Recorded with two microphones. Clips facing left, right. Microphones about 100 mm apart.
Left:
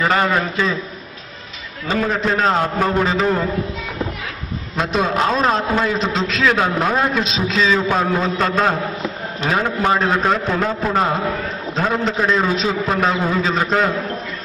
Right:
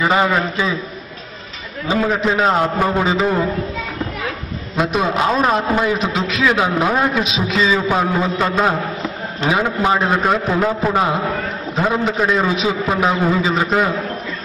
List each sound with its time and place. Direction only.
0.0 s a man's voice: 10° right (ahead or behind)
1.9 s a man's voice: 15° right (ahead or behind)
4.7 s a man's voice: 5° right (ahead or behind)
11.7 s a man's voice: 5° right (ahead or behind)